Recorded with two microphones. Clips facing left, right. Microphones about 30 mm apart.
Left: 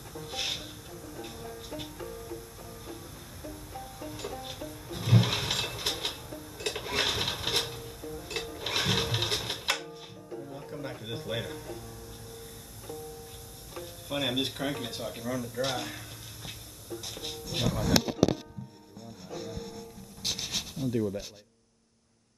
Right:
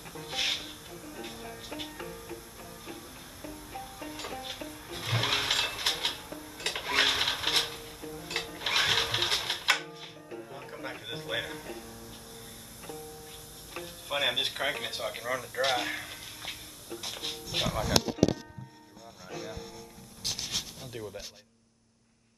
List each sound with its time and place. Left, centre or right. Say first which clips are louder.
0.1 s music: right 3 dB; centre
13.7 s a sound: right 1 dB; right
19.2 s music: even; right
20.2 s pant: left 1 dB; centre